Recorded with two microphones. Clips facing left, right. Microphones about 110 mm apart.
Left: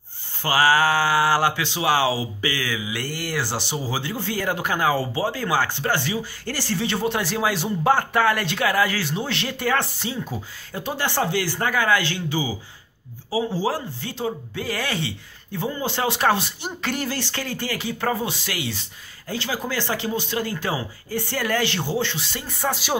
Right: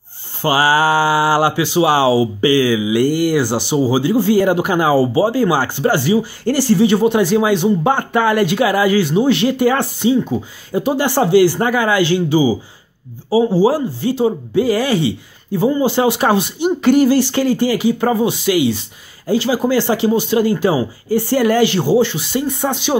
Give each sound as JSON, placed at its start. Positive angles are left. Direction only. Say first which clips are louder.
{"t": 0.4, "sound": "speech", "louder": "right 5 dB", "side_deg": -15}
{"t": 2.0, "sound": "speech", "louder": "right 11 dB", "side_deg": -35}
{"t": 2.5, "sound": "a man's voice", "louder": "right 14 dB", "side_deg": -15}
{"t": 13.5, "sound": "a man's voice", "louder": "right 11 dB", "side_deg": -10}